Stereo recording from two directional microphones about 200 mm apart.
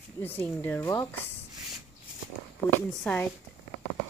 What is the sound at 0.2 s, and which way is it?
Speech, 10° left (ahead or behind).